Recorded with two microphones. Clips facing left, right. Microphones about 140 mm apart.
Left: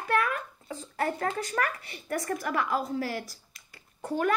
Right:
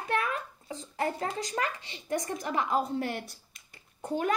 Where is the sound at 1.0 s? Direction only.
25° right (ahead or behind).